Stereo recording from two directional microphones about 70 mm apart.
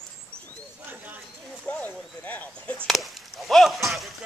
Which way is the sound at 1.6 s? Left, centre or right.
Left.